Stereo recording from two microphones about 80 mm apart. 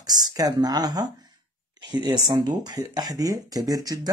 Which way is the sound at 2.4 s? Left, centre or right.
Right.